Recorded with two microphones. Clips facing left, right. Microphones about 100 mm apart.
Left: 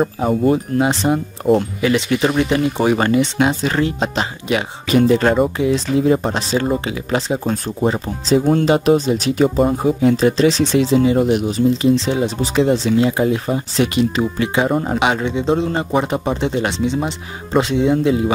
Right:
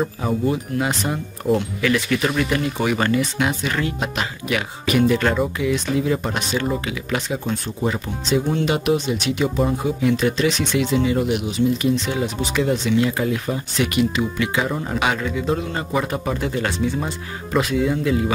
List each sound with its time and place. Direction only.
0.0 s speech: 40° left (ahead or behind)
8.5 s speech: 45° left (ahead or behind)
8.7 s speech: 35° left (ahead or behind)
15.0 s speech: 25° left (ahead or behind)